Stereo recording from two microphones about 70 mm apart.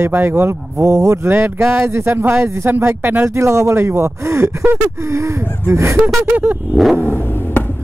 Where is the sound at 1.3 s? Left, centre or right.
Right.